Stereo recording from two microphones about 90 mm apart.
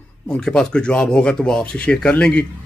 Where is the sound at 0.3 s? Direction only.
10° left (ahead or behind).